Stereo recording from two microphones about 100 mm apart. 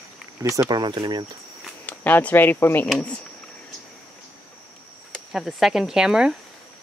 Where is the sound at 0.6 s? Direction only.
45° right (ahead or behind).